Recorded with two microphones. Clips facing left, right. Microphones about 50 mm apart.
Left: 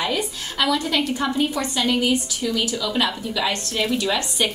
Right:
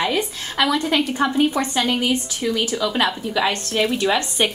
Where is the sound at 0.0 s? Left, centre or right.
Right.